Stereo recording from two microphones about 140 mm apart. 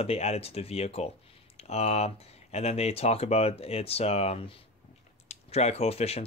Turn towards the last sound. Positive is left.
turn(degrees=45)  # may be behind; listen again after turning